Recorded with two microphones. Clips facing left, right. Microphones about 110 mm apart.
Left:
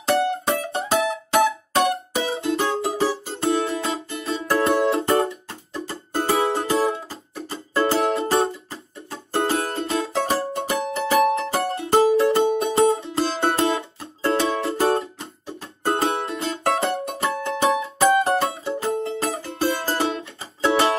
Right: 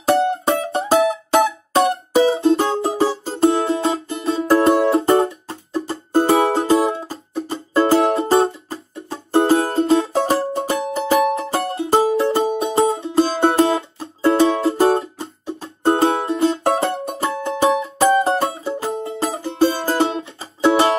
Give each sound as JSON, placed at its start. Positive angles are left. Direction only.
{"t": 0.2, "sound": "music", "side_deg": -25}